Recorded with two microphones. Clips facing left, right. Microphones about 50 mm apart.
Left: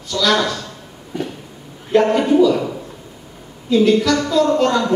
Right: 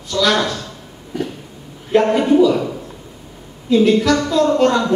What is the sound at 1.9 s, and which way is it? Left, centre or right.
Speech, centre.